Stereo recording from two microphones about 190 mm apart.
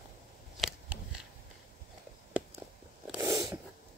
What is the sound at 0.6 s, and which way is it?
Scissors, 5° right (ahead or behind).